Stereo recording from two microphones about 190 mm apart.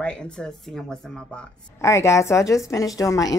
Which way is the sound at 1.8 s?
15° left (ahead or behind).